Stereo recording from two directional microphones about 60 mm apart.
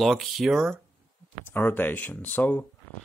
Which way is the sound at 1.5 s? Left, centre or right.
Left.